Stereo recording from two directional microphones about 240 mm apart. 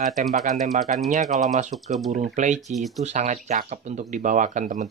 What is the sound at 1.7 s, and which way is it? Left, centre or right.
Speech, centre.